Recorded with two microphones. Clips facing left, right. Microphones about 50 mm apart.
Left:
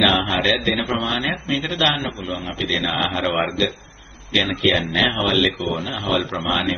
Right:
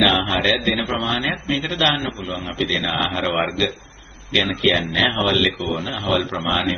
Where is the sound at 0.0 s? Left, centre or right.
Centre.